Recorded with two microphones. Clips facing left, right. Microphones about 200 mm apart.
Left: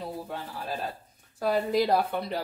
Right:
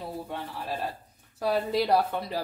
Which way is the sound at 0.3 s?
Centre (ahead or behind).